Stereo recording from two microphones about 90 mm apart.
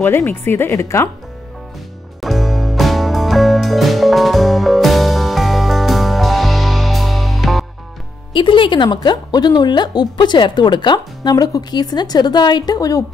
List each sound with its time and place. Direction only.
0.0 s speech: 25° left (ahead or behind)
2.2 s music: centre (ahead or behind)
8.3 s speech: 65° left (ahead or behind); by 13.0 s 45° left (ahead or behind)